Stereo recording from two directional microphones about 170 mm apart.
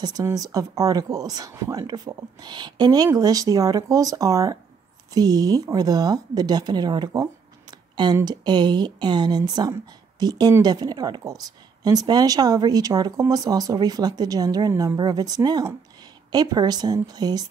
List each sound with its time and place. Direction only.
0.0 s speech: 20° right (ahead or behind)